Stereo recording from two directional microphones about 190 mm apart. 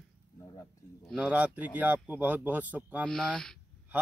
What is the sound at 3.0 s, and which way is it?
Speech, 5° left (ahead or behind).